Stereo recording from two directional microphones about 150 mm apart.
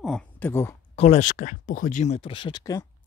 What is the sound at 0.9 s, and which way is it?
Speech, 45° left (ahead or behind).